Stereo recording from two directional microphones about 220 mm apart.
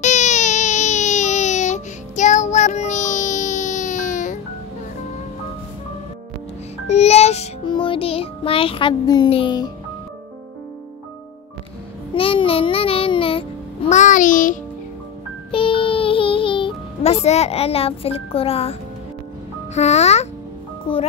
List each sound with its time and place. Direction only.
0.0 s baby cry: 30° left (ahead or behind)
6.9 s child singing: 30° left (ahead or behind)
12.1 s a sound: 25° left (ahead or behind)
15.5 s music: 25° left (ahead or behind)
19.7 s a child's voice: 30° left (ahead or behind)